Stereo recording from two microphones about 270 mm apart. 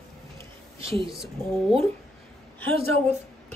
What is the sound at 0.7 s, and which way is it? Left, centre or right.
Speech, centre.